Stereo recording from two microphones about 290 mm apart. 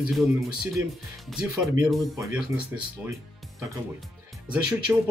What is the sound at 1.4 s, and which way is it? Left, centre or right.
Speech, centre.